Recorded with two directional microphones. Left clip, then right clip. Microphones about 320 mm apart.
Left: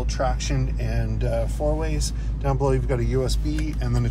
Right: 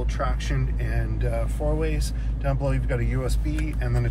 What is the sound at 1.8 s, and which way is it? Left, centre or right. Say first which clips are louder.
Speech: right 1 dB; left.